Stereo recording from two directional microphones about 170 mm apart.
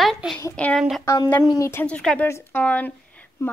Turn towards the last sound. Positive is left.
turn(degrees=10)  # may be behind; listen again after turning